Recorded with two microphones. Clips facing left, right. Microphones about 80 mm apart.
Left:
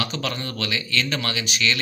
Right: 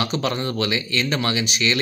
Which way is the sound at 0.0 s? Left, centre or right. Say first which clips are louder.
Right 5 dB; right.